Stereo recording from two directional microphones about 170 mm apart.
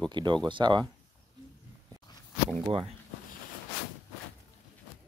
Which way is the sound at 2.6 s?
30° right (ahead or behind).